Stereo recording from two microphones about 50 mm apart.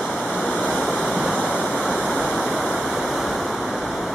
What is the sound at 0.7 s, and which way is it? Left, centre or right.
Waterfall, centre.